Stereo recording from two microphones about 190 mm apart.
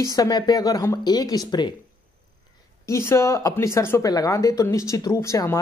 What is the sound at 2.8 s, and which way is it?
Speech, 15° left (ahead or behind).